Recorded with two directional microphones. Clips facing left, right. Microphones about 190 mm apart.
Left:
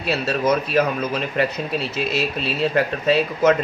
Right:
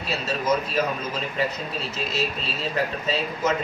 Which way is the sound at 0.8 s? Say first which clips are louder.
Left 6 dB; 65° left (ahead or behind).